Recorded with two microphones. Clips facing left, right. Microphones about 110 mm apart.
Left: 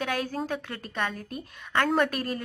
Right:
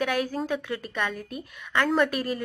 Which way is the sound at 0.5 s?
40° left (ahead or behind).